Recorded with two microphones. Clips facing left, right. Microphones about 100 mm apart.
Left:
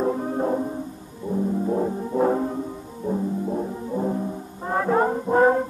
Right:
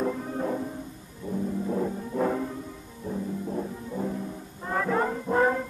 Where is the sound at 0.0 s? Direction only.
35° left (ahead or behind).